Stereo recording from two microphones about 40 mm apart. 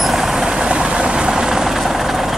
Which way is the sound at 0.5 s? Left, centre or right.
Right.